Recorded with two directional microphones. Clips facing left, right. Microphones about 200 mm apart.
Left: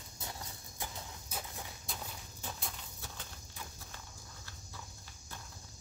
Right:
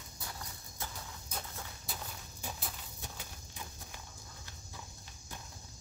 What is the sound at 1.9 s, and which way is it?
Walk, 5° right (ahead or behind).